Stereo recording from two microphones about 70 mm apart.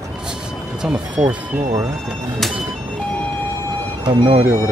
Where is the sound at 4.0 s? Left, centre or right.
Right.